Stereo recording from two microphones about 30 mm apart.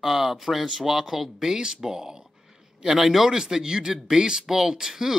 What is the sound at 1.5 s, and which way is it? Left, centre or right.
A man's voice, centre.